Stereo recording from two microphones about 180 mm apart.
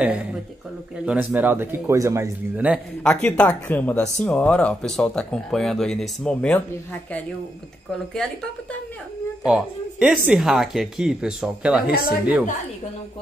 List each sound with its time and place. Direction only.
0.0 s speech: 5° right (ahead or behind)
3.0 s speech: 5° left (ahead or behind)
9.5 s speech: 5° right (ahead or behind)
11.9 s speech: 55° left (ahead or behind)